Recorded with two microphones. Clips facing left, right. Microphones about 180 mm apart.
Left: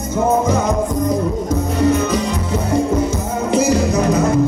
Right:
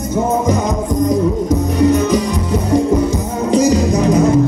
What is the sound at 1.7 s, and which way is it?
Music, 15° right (ahead or behind).